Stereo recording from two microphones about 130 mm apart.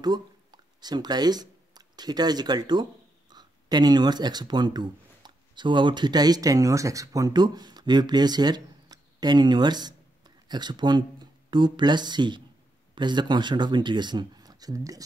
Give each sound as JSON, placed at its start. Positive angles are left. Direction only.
{"t": 0.0, "sound": "speech", "side_deg": -30}